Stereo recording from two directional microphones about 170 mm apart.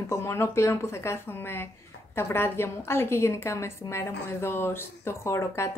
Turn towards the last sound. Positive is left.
turn(degrees=15)  # may be behind; listen again after turning